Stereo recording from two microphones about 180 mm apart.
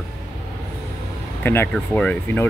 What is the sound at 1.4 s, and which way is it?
Speech, 10° left (ahead or behind).